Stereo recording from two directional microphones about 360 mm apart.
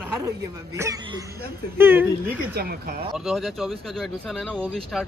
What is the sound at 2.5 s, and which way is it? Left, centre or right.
Speech, right.